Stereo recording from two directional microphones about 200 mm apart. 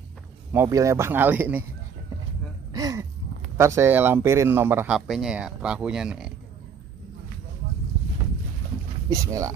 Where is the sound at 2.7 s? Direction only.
15° right (ahead or behind).